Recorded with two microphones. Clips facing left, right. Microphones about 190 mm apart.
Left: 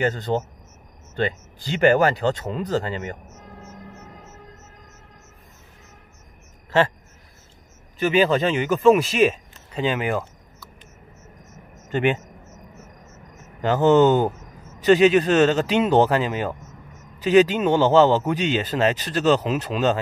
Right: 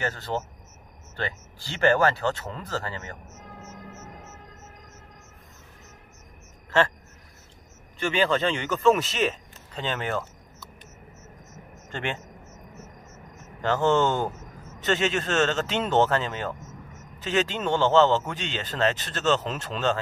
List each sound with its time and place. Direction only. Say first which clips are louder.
0.0 s a man's voice: left 7 dB; 20° left (ahead or behind)
3.3 s music: left 1 dB; 5° right (ahead or behind)
8.0 s a man's voice: left 5 dB; 15° left (ahead or behind)
11.9 s a sound: left 11 dB; 15° left (ahead or behind)
13.6 s a man's voice: left 6 dB; 15° left (ahead or behind)